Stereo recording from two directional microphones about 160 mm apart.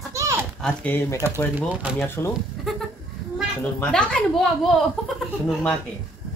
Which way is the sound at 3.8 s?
5° left (ahead or behind).